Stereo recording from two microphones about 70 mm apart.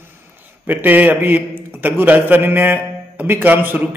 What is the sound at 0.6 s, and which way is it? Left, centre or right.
A man's voice, right.